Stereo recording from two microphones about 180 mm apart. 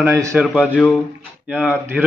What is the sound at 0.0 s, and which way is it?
Speech, 15° right (ahead or behind).